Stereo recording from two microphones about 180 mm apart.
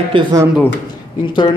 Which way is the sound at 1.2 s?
25° left (ahead or behind).